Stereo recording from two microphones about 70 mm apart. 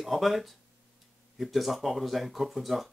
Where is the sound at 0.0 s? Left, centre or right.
Centre.